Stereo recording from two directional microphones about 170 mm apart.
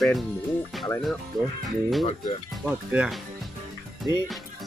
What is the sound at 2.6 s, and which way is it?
Speech, 5° right (ahead or behind).